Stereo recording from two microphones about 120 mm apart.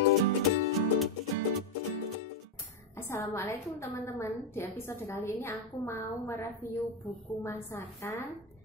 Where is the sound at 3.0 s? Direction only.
25° left (ahead or behind).